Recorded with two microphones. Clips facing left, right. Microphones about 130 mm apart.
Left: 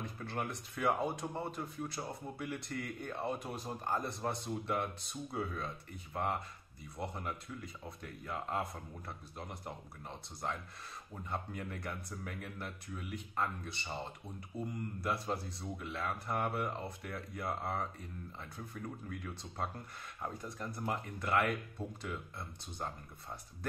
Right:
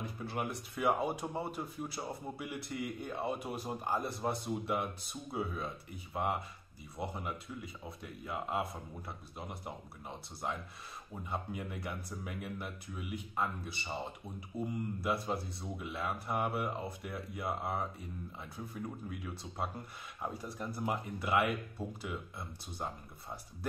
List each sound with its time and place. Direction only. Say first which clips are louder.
0.0 s speech: right 2 dB; 5° right (ahead or behind)